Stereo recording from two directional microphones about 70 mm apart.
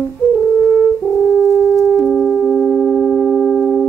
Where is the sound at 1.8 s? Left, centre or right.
Centre.